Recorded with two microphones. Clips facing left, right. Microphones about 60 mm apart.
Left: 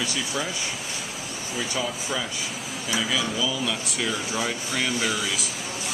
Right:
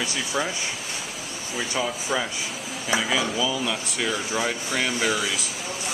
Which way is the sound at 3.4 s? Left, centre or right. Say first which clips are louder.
Right 1 dB; centre.